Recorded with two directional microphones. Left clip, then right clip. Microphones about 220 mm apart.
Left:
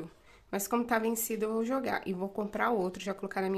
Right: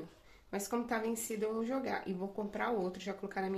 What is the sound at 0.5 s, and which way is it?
Speech, 35° left (ahead or behind).